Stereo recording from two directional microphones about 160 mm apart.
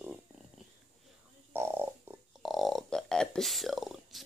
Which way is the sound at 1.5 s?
15° right (ahead or behind).